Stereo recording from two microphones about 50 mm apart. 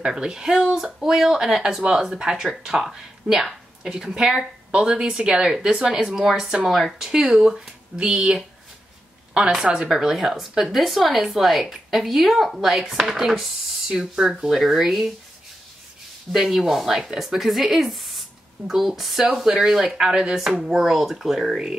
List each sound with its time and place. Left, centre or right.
0.0 s speech: centre
8.0 s a woman's voice: centre
9.8 s chopping: centre
14.1 s speech: centre
16.3 s chopping: centre
19.3 s speech: centre
20.8 s chopping: centre